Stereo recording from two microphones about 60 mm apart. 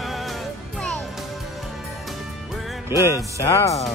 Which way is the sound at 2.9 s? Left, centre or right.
Left.